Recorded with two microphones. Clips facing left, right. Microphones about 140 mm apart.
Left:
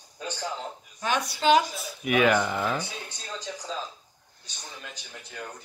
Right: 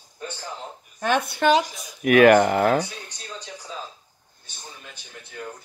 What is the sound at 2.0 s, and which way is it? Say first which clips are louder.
Speech: right 8 dB; 60° right (ahead or behind).